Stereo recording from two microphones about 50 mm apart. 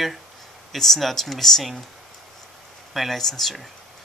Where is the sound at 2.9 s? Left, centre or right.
Centre.